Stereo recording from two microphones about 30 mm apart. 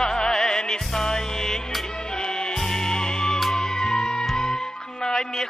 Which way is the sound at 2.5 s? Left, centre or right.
Centre.